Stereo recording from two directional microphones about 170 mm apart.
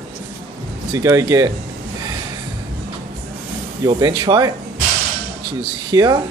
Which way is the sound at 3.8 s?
25° right (ahead or behind).